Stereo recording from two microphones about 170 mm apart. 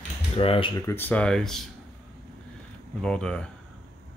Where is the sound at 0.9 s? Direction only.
10° left (ahead or behind).